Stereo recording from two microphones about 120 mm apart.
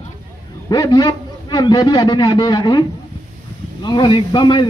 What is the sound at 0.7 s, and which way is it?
A man's voice, 35° left (ahead or behind).